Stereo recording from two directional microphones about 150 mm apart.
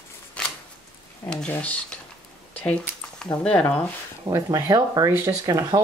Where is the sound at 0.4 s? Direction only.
5° left (ahead or behind).